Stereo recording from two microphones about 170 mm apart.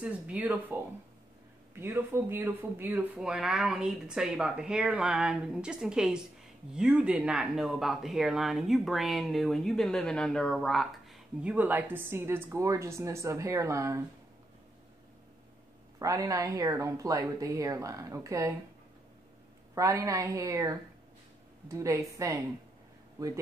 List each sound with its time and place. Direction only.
0.0 s speech: 5° right (ahead or behind)
16.0 s speech: 20° right (ahead or behind)
19.7 s speech: 20° right (ahead or behind)